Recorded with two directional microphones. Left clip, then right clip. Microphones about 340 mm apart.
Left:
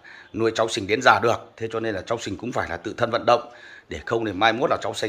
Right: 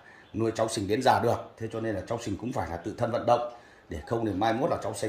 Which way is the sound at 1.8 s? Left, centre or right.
Centre.